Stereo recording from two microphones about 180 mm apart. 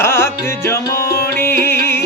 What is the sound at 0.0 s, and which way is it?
Music, 15° left (ahead or behind).